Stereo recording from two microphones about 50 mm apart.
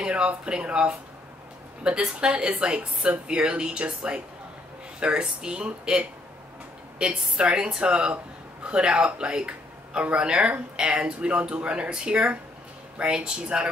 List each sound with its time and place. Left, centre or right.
0.0 s speech: right